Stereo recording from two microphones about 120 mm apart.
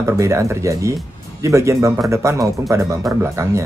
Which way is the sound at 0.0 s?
25° right (ahead or behind).